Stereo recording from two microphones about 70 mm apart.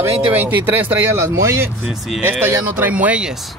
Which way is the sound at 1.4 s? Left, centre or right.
Right.